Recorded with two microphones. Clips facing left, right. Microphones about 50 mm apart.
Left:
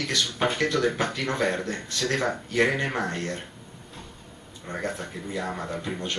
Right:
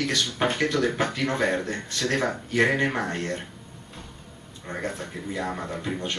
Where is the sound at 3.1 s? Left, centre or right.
Right.